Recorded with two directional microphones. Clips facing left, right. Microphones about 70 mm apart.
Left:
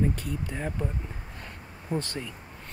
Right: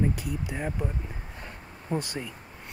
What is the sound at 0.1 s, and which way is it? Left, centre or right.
Speech, centre.